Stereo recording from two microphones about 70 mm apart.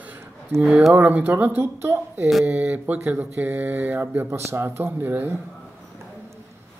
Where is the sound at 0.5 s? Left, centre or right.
Right.